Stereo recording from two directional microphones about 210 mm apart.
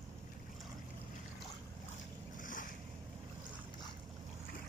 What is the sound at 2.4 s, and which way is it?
Waves, 40° left (ahead or behind).